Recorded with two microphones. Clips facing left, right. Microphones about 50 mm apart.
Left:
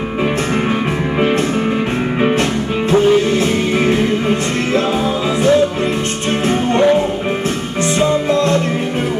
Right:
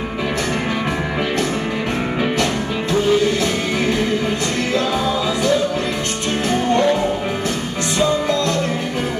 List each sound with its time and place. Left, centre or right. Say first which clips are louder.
2.1 s music: left 5 dB; left
6.5 s music: left 2 dB; left
8.0 s music: left 3 dB; left